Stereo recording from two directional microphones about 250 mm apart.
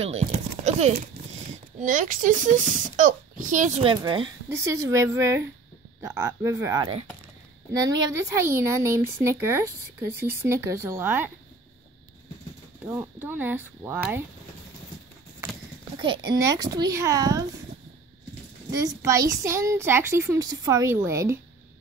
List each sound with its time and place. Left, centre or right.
0.0 s chopping: right
1.5 s speech: right; by 11.3 s centre
12.8 s speech: centre
16.0 s speech: centre
18.8 s speech: centre